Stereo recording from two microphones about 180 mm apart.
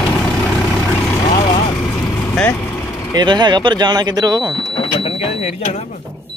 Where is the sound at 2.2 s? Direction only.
10° left (ahead or behind).